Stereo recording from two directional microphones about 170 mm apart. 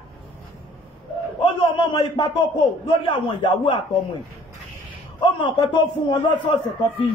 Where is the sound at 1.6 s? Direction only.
25° left (ahead or behind).